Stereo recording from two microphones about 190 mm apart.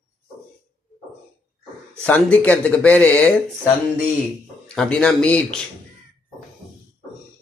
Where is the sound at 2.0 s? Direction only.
5° left (ahead or behind).